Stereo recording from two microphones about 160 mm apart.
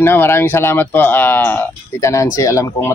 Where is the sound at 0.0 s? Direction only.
15° left (ahead or behind).